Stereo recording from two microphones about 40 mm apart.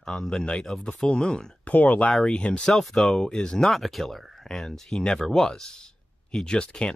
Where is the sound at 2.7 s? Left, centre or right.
Centre.